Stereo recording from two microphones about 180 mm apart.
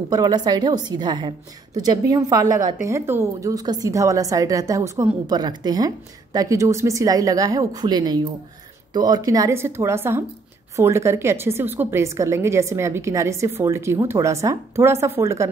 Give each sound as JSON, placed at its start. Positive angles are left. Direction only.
{"t": 0.1, "sound": "a woman's voice", "side_deg": -20}